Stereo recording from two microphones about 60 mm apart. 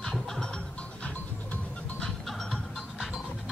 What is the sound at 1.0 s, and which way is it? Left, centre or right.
Music, left.